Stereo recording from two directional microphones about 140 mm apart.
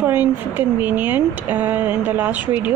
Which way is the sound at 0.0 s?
15° right (ahead or behind).